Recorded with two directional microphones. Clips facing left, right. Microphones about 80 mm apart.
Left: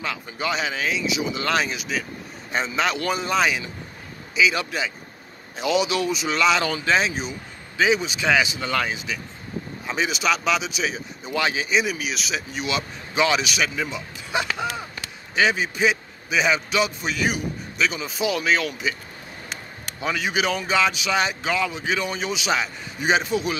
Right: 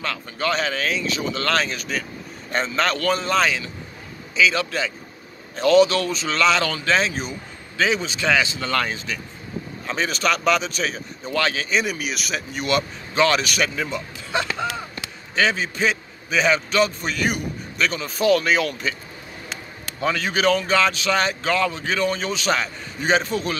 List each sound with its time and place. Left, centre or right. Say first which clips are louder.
0.0 s speech: right 2 dB; centre
14.3 s a sound: right 1 dB; centre
15.3 s speech: even; centre
20.0 s speech: right 2 dB; centre